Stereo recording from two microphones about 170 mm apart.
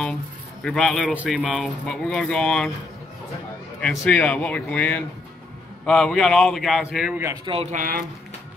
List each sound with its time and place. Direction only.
0.7 s speech: 5° left (ahead or behind)
3.8 s speech: centre (ahead or behind)
7.4 s speech: 35° right (ahead or behind)
7.7 s speech: 55° right (ahead or behind)